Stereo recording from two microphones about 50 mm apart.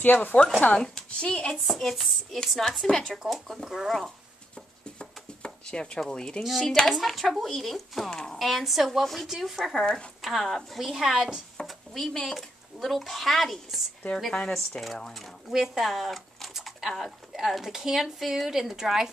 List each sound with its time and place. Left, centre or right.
0.0 s speech: left
0.7 s a woman's voice: centre
1.6 s a woman's voice: centre
3.2 s speech: centre
4.9 s dishes: centre
6.6 s speech: centre
11.6 s speech: centre
15.5 s speech: centre